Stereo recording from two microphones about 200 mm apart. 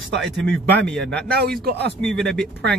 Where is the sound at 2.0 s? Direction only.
Centre (ahead or behind).